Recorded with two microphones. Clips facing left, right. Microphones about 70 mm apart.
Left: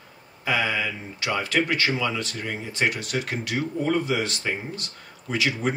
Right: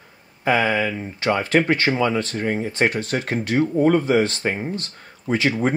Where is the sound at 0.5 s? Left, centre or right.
Right.